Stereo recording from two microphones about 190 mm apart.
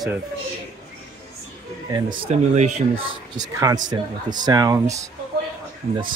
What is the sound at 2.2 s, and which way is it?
Speech, 35° right (ahead or behind).